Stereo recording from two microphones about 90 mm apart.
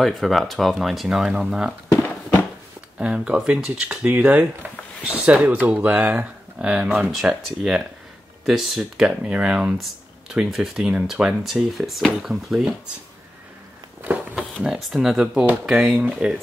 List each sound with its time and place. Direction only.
0.0 s speech: centre (ahead or behind)
3.0 s speech: 15° right (ahead or behind)
14.0 s a sound: 20° right (ahead or behind)
14.6 s speech: 5° right (ahead or behind)